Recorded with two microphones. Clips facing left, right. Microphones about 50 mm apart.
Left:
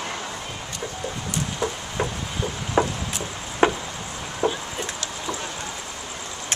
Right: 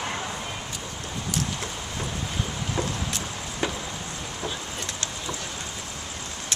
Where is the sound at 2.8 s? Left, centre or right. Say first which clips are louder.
Left 8 dB; left.